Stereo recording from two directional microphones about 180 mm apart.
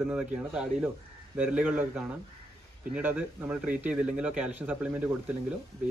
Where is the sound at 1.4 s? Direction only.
10° right (ahead or behind).